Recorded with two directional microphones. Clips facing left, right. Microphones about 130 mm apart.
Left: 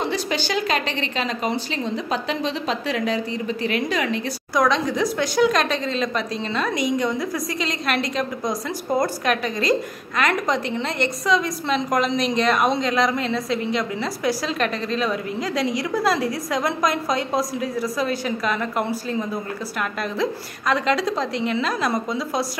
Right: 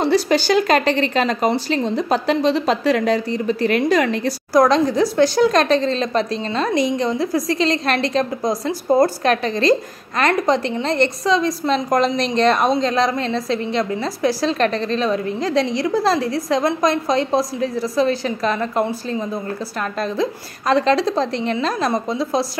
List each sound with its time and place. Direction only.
0.0 s a woman's voice: 35° right (ahead or behind)